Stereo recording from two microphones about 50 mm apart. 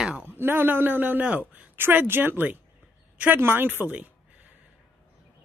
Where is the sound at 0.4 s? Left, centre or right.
Right.